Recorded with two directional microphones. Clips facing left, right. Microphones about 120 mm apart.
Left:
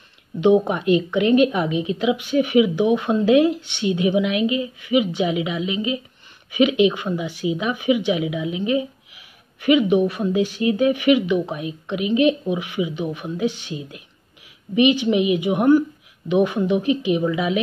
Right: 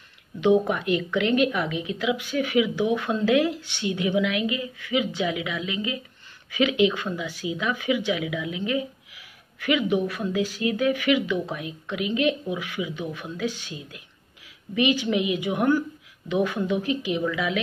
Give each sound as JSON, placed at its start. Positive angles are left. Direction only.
{"t": 0.4, "sound": "a woman's voice", "side_deg": 20}